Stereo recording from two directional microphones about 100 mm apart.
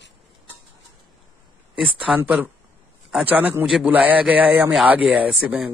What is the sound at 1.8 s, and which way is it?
Speech, 15° right (ahead or behind).